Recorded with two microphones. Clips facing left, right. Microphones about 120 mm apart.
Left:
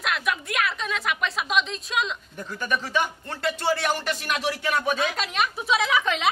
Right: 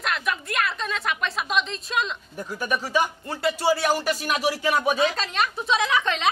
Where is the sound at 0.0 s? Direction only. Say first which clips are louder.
Even; centre (ahead or behind).